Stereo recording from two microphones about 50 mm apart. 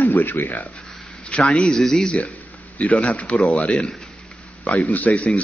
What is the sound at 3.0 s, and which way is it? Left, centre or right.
Speech, left.